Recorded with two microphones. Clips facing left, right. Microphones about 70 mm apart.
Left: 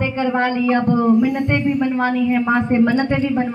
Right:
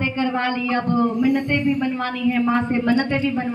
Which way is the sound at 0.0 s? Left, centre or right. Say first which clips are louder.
Left 3 dB; left.